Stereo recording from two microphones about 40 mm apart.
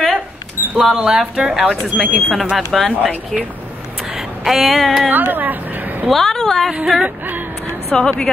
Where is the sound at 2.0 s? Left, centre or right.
Centre.